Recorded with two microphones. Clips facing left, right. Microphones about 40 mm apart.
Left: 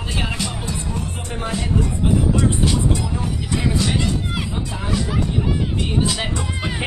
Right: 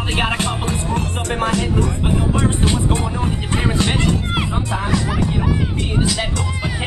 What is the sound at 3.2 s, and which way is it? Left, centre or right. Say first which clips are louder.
Music: right 2 dB; right.